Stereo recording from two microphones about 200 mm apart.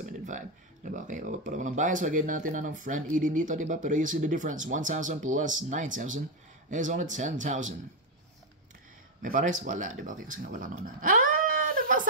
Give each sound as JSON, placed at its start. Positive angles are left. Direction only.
{"t": 0.8, "sound": "speech", "side_deg": -40}
{"t": 9.2, "sound": "speech", "side_deg": -40}